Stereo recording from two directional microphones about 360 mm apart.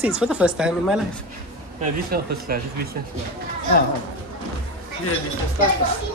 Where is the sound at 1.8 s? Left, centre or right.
Right.